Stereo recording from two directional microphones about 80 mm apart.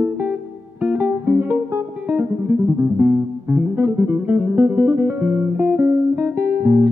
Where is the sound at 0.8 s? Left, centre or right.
Right.